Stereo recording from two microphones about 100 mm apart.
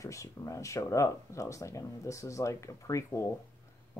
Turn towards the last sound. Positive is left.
turn(degrees=30)  # may be behind; listen again after turning